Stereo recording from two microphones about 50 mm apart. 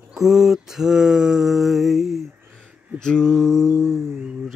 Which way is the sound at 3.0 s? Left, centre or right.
Centre.